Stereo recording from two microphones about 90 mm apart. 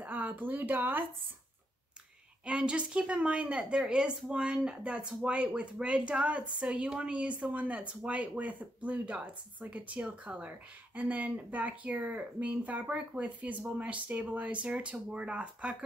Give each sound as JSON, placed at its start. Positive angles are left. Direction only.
{"t": 0.0, "sound": "speech", "side_deg": -20}
{"t": 2.4, "sound": "speech", "side_deg": -10}